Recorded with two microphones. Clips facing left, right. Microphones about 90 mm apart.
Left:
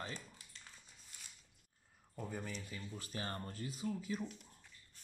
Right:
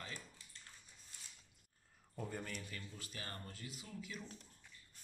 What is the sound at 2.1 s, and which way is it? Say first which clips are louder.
Speech: left 1 dB; 5° left (ahead or behind).